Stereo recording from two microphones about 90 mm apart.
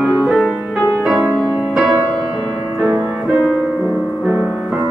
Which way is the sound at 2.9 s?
25° right (ahead or behind).